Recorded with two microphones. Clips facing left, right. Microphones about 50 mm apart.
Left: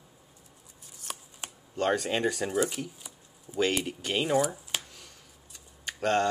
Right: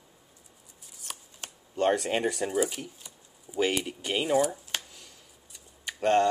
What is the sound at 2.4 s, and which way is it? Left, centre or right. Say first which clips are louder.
Speech: even; centre.